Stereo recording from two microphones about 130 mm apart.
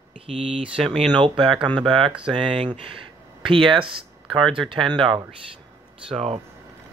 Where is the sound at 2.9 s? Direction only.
40° right (ahead or behind).